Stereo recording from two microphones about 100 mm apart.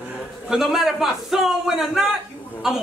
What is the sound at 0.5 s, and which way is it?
A man's voice, 5° right (ahead or behind).